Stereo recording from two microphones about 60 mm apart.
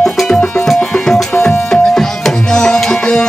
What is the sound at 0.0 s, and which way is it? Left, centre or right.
Music, centre.